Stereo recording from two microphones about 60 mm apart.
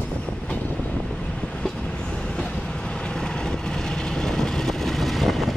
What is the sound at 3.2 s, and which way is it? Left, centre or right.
Vehicle, centre.